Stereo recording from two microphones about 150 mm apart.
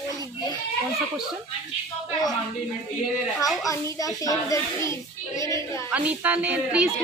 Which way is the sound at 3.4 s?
25° left (ahead or behind).